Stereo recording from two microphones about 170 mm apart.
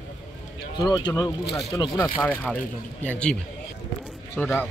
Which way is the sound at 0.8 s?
25° left (ahead or behind).